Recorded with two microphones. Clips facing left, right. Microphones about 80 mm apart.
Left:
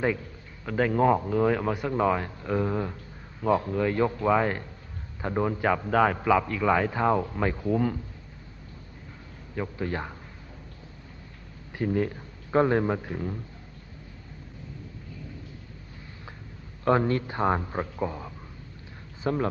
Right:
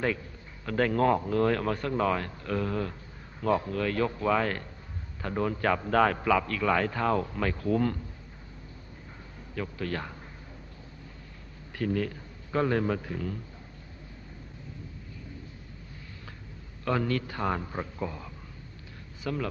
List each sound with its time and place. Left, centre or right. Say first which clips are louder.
0.7 s a man's voice: left 2 dB; centre
9.6 s speech: left 3 dB; left
11.7 s a man's voice: left 3 dB; left
16.8 s speech: left 5 dB; left
19.2 s speech: left 5 dB; left